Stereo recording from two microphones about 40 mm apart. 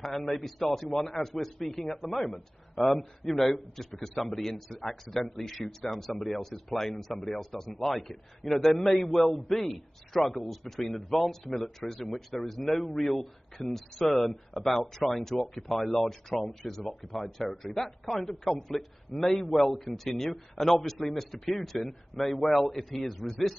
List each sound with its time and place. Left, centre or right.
0.0 s a man's voice: centre
18.1 s a man's voice: centre
18.4 s a man's voice: centre